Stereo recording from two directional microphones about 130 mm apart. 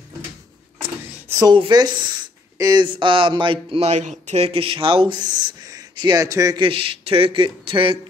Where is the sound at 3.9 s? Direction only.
65° right (ahead or behind); by 6.5 s 25° right (ahead or behind).